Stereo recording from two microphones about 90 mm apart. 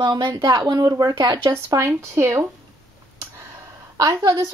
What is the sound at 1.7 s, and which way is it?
Speech, 35° right (ahead or behind).